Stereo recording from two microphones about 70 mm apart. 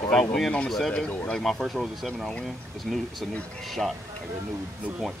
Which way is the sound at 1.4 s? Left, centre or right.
Centre.